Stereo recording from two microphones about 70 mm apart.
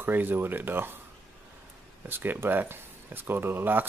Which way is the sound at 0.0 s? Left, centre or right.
Right.